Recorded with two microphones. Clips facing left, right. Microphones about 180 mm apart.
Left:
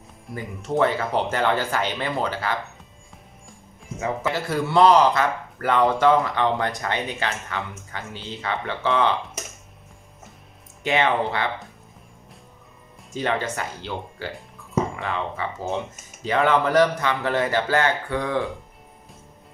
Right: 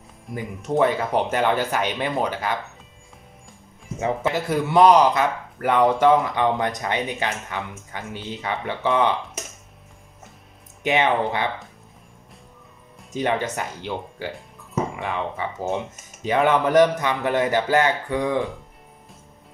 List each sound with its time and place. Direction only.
0.3 s speech: 15° right (ahead or behind)
4.0 s speech: 20° right (ahead or behind)
10.8 s speech: 15° right (ahead or behind)
13.1 s speech: 15° right (ahead or behind)